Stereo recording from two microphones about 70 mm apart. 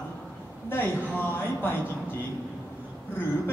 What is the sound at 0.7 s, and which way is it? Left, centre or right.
A man's voice, left.